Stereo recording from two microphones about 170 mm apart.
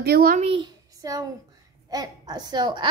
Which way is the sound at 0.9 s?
20° right (ahead or behind).